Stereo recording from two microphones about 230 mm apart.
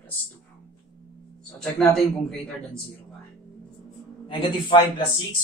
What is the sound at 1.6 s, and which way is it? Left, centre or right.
Speech, centre.